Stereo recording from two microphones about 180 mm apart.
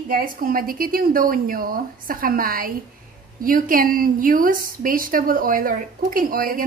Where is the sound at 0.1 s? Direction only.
50° right (ahead or behind).